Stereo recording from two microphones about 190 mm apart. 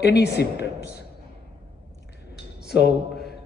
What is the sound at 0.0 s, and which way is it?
A man's voice, 60° left (ahead or behind).